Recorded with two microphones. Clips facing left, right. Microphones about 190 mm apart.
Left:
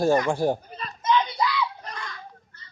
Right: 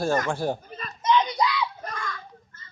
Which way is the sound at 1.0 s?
20° right (ahead or behind).